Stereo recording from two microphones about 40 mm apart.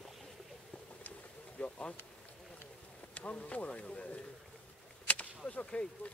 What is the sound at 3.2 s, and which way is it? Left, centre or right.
Speech, left.